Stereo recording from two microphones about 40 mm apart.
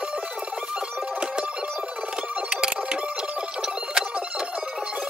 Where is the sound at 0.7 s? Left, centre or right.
Right.